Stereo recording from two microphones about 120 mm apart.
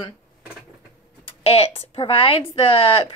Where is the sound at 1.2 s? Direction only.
55° left (ahead or behind).